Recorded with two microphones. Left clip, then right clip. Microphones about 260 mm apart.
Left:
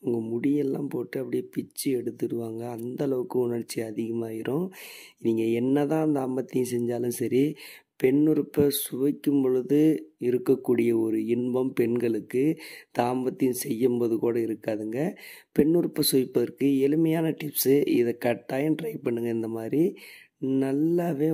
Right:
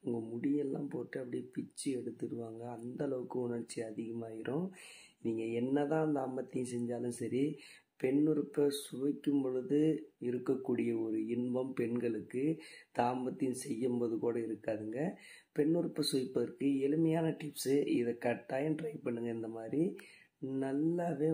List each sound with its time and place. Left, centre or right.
0.0 s speech: left